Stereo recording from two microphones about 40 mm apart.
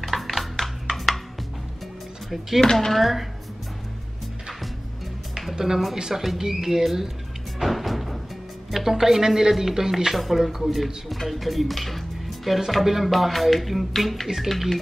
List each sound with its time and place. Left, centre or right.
0.0 s music: centre
2.6 s speech: centre
3.0 s music: centre
5.9 s speech: centre
7.5 s music: centre
8.7 s speech: centre
11.2 s music: centre
12.4 s speech: centre
12.7 s music: centre